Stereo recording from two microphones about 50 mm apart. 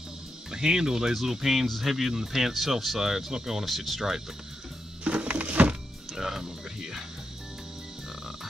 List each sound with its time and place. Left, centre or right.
0.5 s speech: centre
5.0 s a sound: right
6.1 s music: centre